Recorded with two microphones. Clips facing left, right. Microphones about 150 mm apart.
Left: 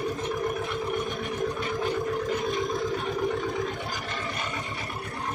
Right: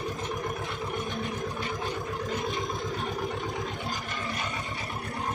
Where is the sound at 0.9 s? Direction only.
20° left (ahead or behind).